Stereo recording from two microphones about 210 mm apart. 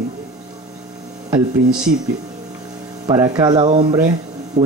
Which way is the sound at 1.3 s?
5° right (ahead or behind).